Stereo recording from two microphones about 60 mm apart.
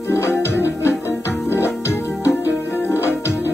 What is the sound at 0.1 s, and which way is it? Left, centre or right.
Music, left.